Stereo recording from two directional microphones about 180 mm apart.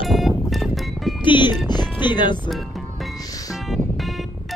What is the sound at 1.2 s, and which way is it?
Speech, 25° left (ahead or behind).